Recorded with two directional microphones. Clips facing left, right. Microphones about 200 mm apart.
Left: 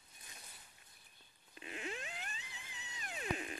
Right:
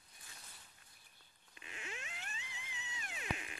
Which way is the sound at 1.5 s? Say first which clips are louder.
Left 6 dB; 35° left (ahead or behind).